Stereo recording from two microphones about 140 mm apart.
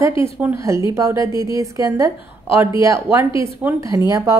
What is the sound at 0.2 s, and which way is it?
A woman's voice, 15° right (ahead or behind).